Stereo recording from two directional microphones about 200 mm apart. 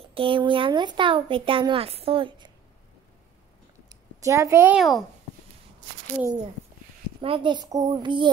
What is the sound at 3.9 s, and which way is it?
A woman's voice, 15° right (ahead or behind).